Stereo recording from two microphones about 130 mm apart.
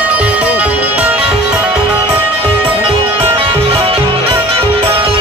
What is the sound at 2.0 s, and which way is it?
Music, 40° right (ahead or behind).